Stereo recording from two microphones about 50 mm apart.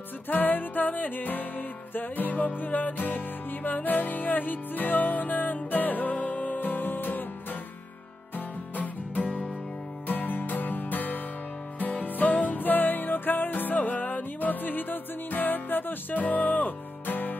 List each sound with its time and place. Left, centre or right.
0.3 s music: left
8.4 s music: left